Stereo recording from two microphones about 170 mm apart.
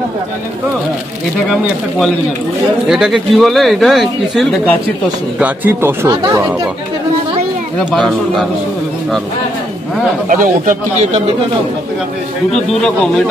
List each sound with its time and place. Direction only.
2.9 s speech: 5° right (ahead or behind)
5.4 s speech: 10° right (ahead or behind)
7.8 s speech: centre (ahead or behind)
10.2 s speech: 50° right (ahead or behind)